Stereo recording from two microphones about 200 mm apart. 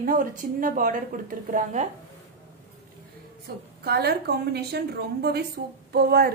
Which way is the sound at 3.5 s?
50° right (ahead or behind).